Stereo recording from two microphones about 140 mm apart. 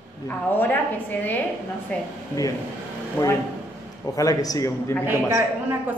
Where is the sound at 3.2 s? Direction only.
10° left (ahead or behind).